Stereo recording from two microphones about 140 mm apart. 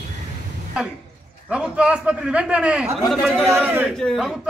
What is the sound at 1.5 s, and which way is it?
A man's voice, 5° right (ahead or behind).